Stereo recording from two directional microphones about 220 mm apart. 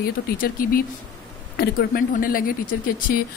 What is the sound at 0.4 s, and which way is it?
Speech, 40° left (ahead or behind).